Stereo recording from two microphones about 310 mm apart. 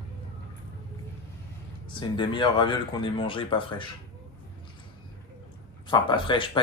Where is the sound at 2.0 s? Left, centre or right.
Centre.